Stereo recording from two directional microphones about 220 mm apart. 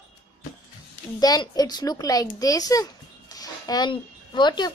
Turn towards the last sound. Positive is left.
turn(degrees=20)  # may be behind; listen again after turning